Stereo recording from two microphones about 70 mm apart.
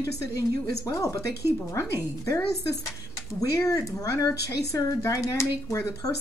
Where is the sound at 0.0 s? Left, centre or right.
Left.